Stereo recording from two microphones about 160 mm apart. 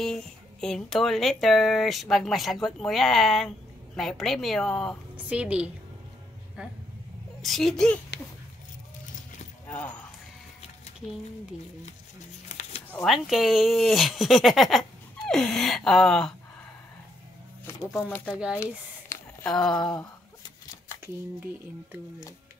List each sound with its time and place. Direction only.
0.0 s speech: 5° left (ahead or behind)
5.1 s a woman's voice: 5° right (ahead or behind)
9.7 s speech: 10° left (ahead or behind)
12.4 s a sound: 40° left (ahead or behind)
13.0 s speech: centre (ahead or behind)
18.0 s speech: 10° left (ahead or behind)
19.4 s speech: 5° left (ahead or behind)